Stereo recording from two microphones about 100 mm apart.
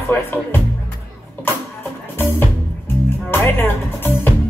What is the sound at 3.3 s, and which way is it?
Music, 20° left (ahead or behind).